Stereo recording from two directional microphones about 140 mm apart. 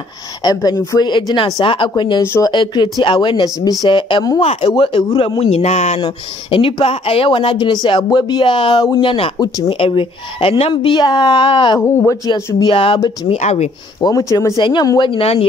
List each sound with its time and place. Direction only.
0.4 s a woman's voice: 30° left (ahead or behind)
2.2 s speech: 20° left (ahead or behind)
2.5 s a woman's voice: 35° left (ahead or behind); by 5.9 s 50° left (ahead or behind)
5.9 s speech: 35° left (ahead or behind)
11.8 s a woman's voice: 20° left (ahead or behind)
12.6 s speech: 40° left (ahead or behind)
13.3 s a man's voice: 50° left (ahead or behind)
13.9 s speech: 25° left (ahead or behind); by 15.4 s 45° left (ahead or behind)